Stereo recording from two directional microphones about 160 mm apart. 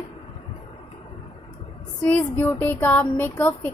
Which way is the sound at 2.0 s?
10° left (ahead or behind).